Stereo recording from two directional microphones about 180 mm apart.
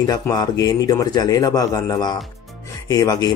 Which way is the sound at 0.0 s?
20° left (ahead or behind).